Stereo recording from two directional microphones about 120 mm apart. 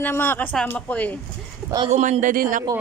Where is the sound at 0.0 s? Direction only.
20° left (ahead or behind).